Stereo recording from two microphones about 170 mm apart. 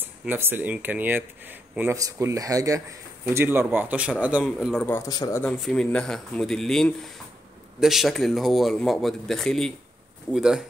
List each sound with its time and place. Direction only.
0.0 s speech: 10° right (ahead or behind)
4.8 s speech: 15° left (ahead or behind)
5.4 s a man's voice: 5° left (ahead or behind)